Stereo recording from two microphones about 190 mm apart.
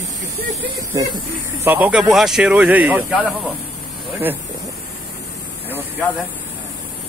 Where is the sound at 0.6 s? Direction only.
20° right (ahead or behind).